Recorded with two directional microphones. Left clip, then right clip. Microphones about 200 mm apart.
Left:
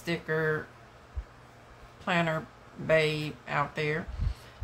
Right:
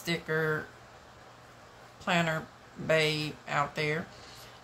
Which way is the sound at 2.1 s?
10° left (ahead or behind).